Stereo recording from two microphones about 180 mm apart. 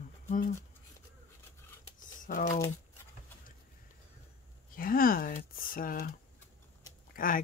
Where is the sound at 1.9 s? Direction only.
50° left (ahead or behind).